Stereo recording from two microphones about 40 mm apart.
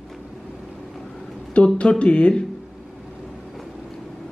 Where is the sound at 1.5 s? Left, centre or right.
Left.